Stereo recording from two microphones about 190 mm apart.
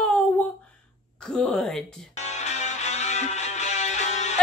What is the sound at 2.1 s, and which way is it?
Music, 35° left (ahead or behind).